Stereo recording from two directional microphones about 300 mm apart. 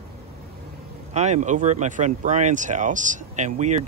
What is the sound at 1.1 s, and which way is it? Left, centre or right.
Speech, right.